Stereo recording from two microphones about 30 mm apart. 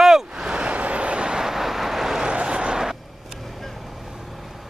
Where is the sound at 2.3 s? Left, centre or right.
Right.